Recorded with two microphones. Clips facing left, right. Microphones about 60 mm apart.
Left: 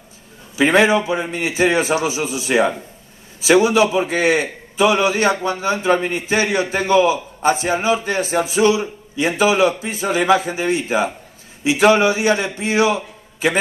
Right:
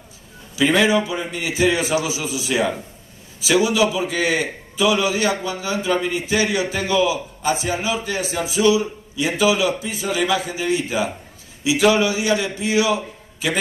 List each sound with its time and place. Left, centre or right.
0.6 s a man's voice: left